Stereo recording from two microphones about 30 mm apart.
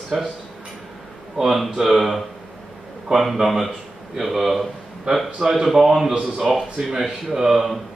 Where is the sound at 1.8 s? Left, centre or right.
Centre.